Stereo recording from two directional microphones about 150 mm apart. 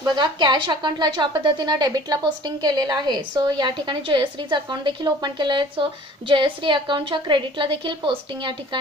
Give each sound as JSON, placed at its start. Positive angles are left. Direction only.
{"t": 0.0, "sound": "a woman's voice", "side_deg": -30}